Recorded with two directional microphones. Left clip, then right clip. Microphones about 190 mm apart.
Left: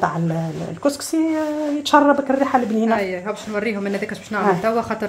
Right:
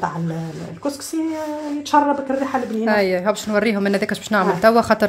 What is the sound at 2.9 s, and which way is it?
Speech, 50° right (ahead or behind).